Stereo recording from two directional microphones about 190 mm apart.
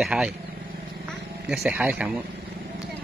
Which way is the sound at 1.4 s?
5° right (ahead or behind).